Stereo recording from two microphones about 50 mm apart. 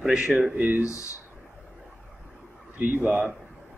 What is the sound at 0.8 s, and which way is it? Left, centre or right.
Speech, left.